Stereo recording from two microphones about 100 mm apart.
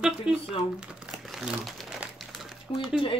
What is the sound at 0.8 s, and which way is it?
Crumpling, 10° right (ahead or behind).